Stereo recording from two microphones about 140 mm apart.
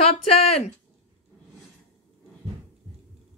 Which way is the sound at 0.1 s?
50° left (ahead or behind).